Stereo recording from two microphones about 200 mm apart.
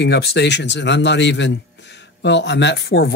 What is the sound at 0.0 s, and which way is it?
A man's voice, 55° left (ahead or behind).